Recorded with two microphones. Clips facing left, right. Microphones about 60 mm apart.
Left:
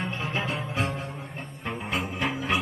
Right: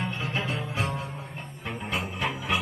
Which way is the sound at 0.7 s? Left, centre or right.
Centre.